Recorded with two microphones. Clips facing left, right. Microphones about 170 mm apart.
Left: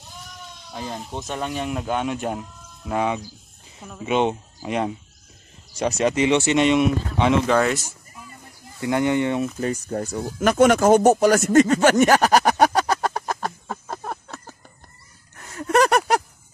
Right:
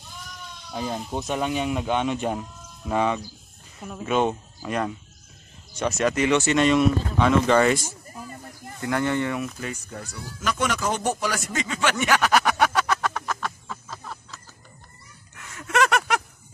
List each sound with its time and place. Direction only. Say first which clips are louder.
0.7 s speech: right 2 dB; 15° right (ahead or behind); by 3.2 s 5° left (ahead or behind)
4.0 s speech: left 2 dB; 20° left (ahead or behind)
5.8 s speech: left 3 dB; 35° left (ahead or behind)
7.4 s speech: right 1 dB; 5° left (ahead or behind)
8.1 s a sound: right 6 dB; 40° right (ahead or behind)
8.8 s speech: left 4 dB; 20° left (ahead or behind)
9.6 s speech: left 9 dB; 40° left (ahead or behind)
13.8 s a sound: left 7 dB; 55° left (ahead or behind)
15.3 s a sound: left 5 dB; 40° left (ahead or behind)